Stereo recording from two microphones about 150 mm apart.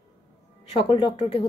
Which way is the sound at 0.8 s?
35° left (ahead or behind).